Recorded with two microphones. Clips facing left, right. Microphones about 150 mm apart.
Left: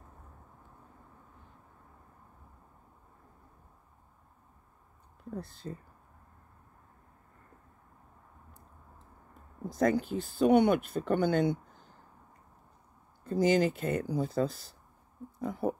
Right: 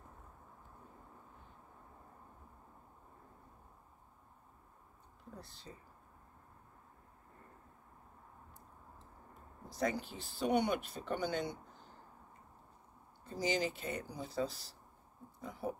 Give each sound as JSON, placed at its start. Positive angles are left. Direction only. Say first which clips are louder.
{"t": 5.3, "sound": "speech", "louder": "left 12 dB", "side_deg": 50}
{"t": 9.7, "sound": "speech", "louder": "left 9 dB", "side_deg": 50}
{"t": 13.2, "sound": "speech", "louder": "left 10 dB", "side_deg": 50}
{"t": 15.4, "sound": "pig", "louder": "left 9 dB", "side_deg": 55}